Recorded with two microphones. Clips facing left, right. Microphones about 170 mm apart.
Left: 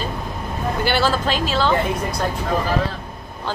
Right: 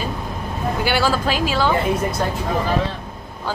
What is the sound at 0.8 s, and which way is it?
Speech, 10° right (ahead or behind).